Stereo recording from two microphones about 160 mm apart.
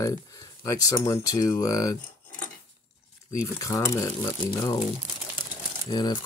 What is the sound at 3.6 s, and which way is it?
Speech, 20° left (ahead or behind).